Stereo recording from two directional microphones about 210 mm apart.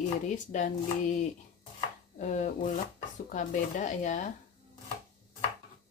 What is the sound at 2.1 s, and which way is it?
Speech, 35° left (ahead or behind).